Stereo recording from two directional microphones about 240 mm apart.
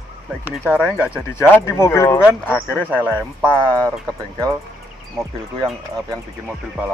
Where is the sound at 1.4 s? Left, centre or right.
Centre.